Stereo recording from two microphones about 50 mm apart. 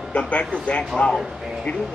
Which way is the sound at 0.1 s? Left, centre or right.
Left.